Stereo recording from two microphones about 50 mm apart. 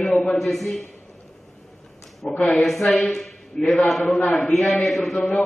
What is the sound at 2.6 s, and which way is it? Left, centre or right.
A man's voice, centre.